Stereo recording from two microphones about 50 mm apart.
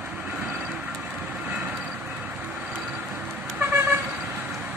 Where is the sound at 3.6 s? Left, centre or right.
Right.